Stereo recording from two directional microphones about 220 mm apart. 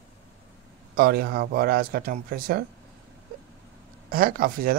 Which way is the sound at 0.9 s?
45° right (ahead or behind).